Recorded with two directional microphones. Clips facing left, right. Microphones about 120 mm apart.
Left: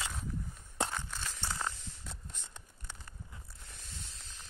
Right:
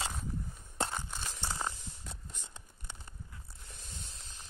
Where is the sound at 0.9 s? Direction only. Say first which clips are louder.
Even; 15° right (ahead or behind).